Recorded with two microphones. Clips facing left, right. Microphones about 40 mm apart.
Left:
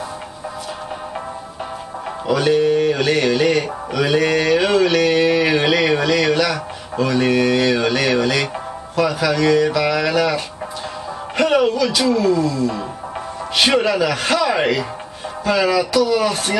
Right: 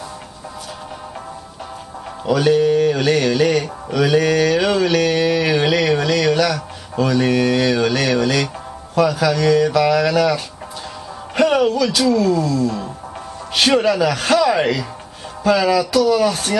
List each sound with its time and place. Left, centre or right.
2.2 s mantra: centre
11.3 s speech: centre
12.0 s mantra: centre